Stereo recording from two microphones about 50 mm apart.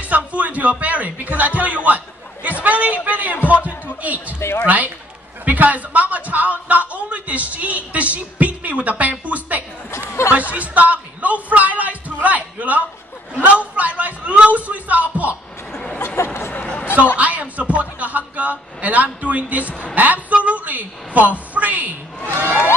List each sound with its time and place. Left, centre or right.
0.0 s speech: right
4.4 s a woman's voice: left
4.6 s speech: right
9.8 s speech: left
10.5 s a man's voice: right
16.2 s a sound: left
16.5 s a sound: left
17.2 s speech: right
22.3 s speech: right